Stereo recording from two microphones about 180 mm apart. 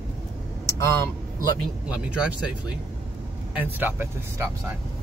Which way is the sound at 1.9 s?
5° right (ahead or behind).